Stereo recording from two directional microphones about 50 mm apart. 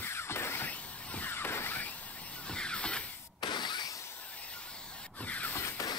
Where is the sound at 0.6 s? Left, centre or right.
Left.